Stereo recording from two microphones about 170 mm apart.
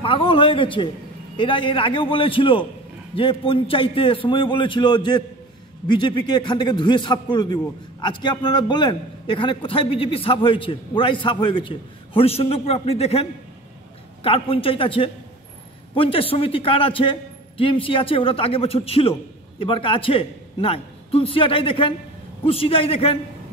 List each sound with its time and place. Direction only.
0.0 s a man's voice: 30° left (ahead or behind)